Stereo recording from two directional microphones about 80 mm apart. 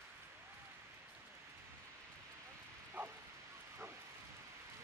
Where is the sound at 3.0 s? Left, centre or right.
Right.